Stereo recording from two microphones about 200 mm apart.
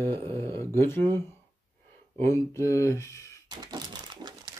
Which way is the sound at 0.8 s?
10° left (ahead or behind).